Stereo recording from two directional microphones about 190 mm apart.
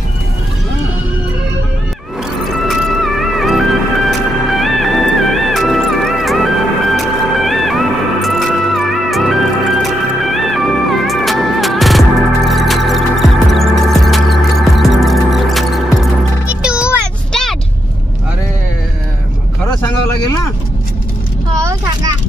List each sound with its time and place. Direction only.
2.4 s music: centre (ahead or behind)
17.3 s vehicle: centre (ahead or behind)
21.6 s a sound: 20° right (ahead or behind)